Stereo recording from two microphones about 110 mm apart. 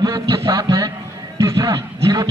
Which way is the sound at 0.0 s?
40° right (ahead or behind).